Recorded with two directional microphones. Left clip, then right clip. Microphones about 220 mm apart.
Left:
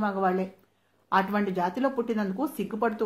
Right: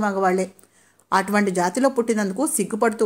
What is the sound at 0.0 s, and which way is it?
A woman's voice, 35° right (ahead or behind).